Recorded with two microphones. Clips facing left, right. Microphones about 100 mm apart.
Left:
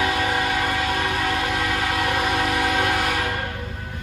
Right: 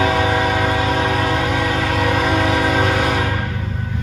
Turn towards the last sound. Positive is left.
turn(degrees=-50)  # may be behind; listen again after turning